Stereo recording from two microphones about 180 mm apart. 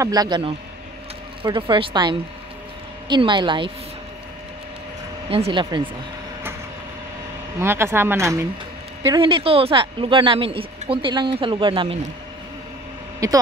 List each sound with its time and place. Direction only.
0.0 s speech: 20° right (ahead or behind)
5.3 s speech: 30° right (ahead or behind)
7.6 s speech: 15° right (ahead or behind)
13.2 s speech: 20° right (ahead or behind)